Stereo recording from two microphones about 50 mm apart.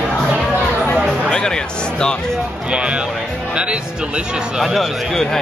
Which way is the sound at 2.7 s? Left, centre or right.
Right.